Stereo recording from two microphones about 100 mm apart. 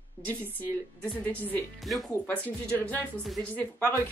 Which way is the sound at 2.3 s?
15° left (ahead or behind).